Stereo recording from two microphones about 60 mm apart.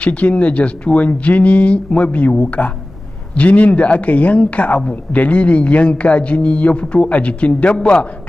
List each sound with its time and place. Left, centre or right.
0.0 s speech: left